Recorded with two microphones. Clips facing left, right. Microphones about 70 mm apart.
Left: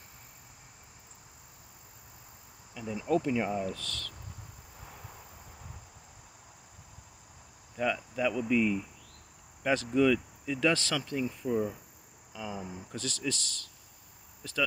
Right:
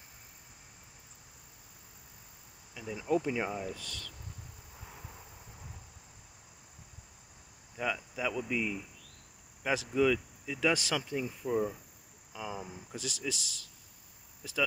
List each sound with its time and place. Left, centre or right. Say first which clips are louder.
2.7 s insect: left 3 dB; centre
3.0 s speech: left 2 dB; centre
3.7 s speech: left 4 dB; centre
7.7 s speech: left 4 dB; centre
12.3 s speech: left 1 dB; centre